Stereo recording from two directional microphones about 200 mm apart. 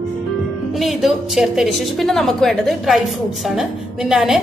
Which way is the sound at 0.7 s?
Centre (ahead or behind).